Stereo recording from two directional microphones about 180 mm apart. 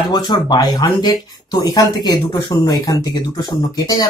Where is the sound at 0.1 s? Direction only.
25° left (ahead or behind).